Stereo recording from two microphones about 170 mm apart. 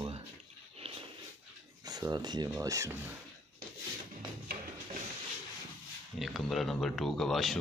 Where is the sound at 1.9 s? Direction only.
20° right (ahead or behind).